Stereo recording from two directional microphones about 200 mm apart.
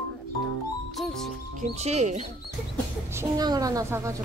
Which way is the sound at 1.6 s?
35° right (ahead or behind).